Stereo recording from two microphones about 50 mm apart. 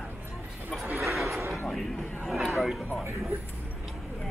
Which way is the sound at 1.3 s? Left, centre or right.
Right.